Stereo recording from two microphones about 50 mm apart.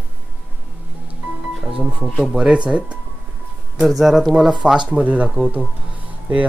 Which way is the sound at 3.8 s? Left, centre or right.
Centre.